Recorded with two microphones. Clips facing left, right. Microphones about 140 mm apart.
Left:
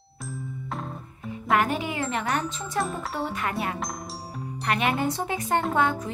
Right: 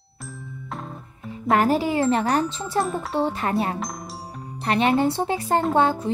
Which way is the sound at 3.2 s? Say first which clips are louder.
Right 7 dB; 30° right (ahead or behind).